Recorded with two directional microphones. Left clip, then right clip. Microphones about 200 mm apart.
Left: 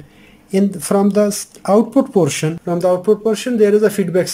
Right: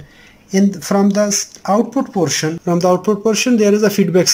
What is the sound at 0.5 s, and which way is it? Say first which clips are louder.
Speech: even; 10° left (ahead or behind).